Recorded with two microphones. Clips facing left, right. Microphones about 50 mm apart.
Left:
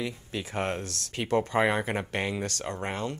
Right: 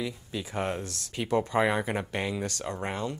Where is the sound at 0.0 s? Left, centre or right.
Left.